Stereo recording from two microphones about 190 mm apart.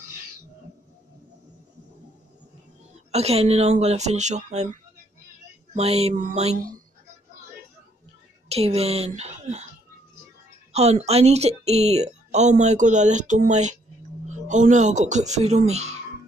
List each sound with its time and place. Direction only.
3.1 s speech: 35° right (ahead or behind)
5.8 s speech: 35° right (ahead or behind)
8.5 s speech: 30° right (ahead or behind)
10.7 s a man's voice: 35° right (ahead or behind)